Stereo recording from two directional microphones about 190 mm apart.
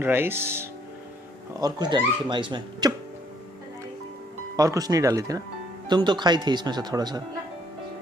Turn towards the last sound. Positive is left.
turn(degrees=-20)  # may be behind; listen again after turning